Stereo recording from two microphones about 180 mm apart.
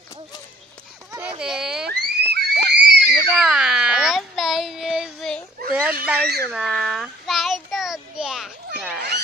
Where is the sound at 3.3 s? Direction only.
5° right (ahead or behind).